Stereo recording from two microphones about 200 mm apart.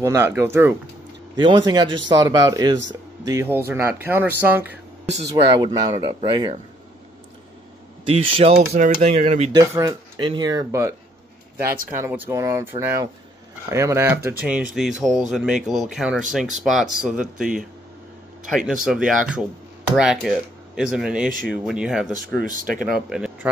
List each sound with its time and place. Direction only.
0.0 s speech: 15° right (ahead or behind)
5.6 s speech: 20° right (ahead or behind)
8.1 s speech: 30° right (ahead or behind)
9.6 s speech: 15° right (ahead or behind)
18.7 s speech: centre (ahead or behind)
22.4 s speech: 40° right (ahead or behind)
22.9 s speech: centre (ahead or behind)